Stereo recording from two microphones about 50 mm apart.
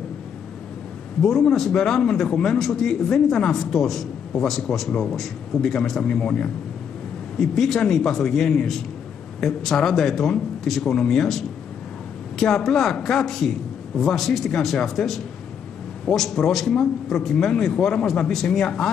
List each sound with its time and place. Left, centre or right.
1.2 s speech: centre
7.3 s speech: centre